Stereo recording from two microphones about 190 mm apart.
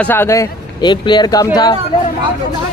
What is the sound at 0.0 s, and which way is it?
A man's voice, 10° left (ahead or behind).